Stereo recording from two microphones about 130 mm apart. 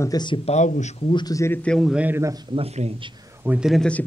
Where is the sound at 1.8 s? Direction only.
10° right (ahead or behind).